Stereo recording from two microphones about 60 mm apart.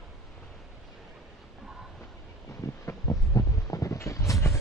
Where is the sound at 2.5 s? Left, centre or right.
Left.